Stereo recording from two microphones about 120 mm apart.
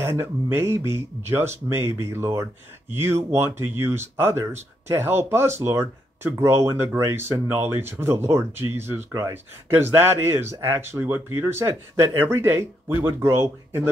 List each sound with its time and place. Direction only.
0.0 s speech: 20° right (ahead or behind)